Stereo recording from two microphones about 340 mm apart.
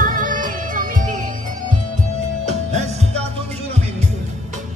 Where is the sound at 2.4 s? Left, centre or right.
Centre.